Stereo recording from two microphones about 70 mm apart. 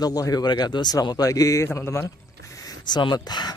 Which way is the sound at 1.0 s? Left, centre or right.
Left.